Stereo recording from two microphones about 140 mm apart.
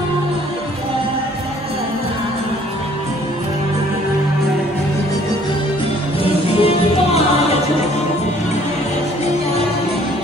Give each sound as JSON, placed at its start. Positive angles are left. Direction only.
{"t": 6.2, "sound": "music", "side_deg": 45}